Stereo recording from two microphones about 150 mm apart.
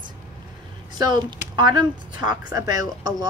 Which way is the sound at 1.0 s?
30° right (ahead or behind).